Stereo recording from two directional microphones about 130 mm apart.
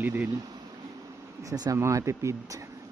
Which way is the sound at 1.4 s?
25° right (ahead or behind).